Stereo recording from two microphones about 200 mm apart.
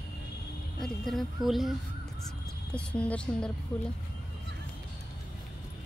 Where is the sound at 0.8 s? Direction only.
Centre (ahead or behind).